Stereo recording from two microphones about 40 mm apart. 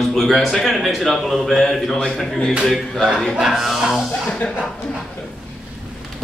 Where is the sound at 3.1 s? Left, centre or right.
Centre.